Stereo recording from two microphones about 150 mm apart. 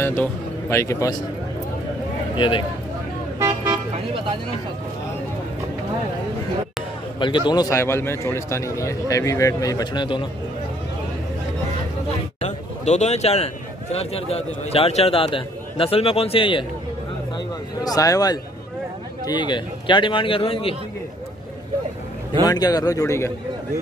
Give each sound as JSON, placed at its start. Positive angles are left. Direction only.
{"t": 0.0, "sound": "speech", "side_deg": 15}
{"t": 2.3, "sound": "speech", "side_deg": 35}
{"t": 3.3, "sound": "vehicle", "side_deg": -25}
{"t": 7.2, "sound": "a man's voice", "side_deg": 30}
{"t": 12.4, "sound": "a sound", "side_deg": 50}
{"t": 13.9, "sound": "a man's voice", "side_deg": 40}
{"t": 17.8, "sound": "a man's voice", "side_deg": 25}
{"t": 22.4, "sound": "a man's voice", "side_deg": 25}